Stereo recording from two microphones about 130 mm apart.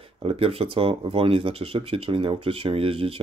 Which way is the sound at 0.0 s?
45° right (ahead or behind).